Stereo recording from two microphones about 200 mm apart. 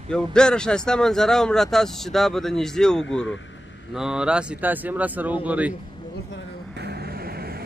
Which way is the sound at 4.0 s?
5° right (ahead or behind).